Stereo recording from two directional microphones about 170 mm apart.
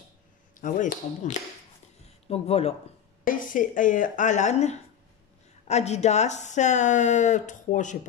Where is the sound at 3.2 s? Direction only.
50° left (ahead or behind).